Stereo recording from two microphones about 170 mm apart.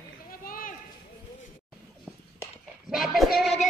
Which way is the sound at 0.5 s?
55° left (ahead or behind).